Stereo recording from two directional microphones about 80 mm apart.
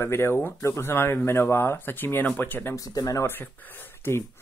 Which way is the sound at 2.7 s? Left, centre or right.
Left.